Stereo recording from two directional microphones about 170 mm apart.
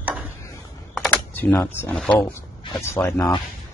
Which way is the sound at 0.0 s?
10° right (ahead or behind).